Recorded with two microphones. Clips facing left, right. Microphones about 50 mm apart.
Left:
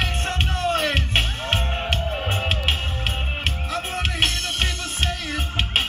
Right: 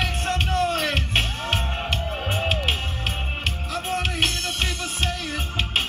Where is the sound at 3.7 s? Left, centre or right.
Left.